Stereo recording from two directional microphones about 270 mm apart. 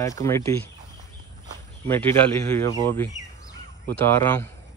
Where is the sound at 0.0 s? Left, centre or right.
Centre.